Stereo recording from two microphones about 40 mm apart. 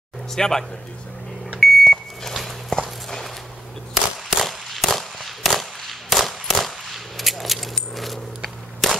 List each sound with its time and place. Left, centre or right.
0.3 s speech: centre
1.6 s microwave oven: centre
2.7 s clip-clop: left
3.1 s walk: centre
3.9 s a sound: centre